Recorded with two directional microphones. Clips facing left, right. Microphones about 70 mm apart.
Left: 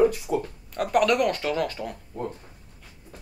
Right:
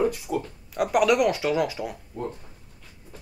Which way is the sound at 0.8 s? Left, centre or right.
Centre.